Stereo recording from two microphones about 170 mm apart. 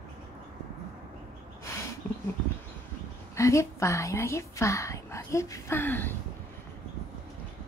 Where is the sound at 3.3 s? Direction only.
15° left (ahead or behind).